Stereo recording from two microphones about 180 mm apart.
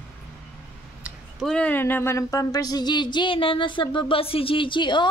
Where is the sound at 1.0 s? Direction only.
Centre (ahead or behind).